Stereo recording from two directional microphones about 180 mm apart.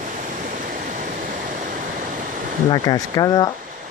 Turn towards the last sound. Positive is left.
turn(degrees=25)  # may be behind; listen again after turning